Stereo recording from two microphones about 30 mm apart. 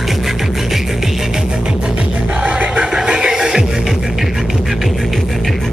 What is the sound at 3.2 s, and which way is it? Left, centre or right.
Music, right.